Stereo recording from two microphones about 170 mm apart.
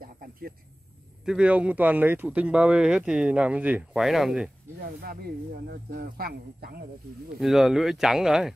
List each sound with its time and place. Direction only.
0.0 s a sound: 60° right (ahead or behind)
1.2 s speech: 5° right (ahead or behind)
4.8 s speech: 65° right (ahead or behind)
7.3 s speech: centre (ahead or behind)